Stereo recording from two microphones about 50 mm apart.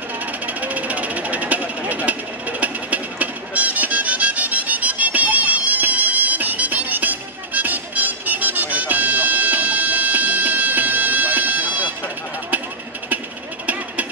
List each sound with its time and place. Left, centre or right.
0.5 s jackhammer: right